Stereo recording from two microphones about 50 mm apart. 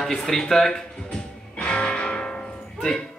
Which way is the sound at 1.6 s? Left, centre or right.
Centre.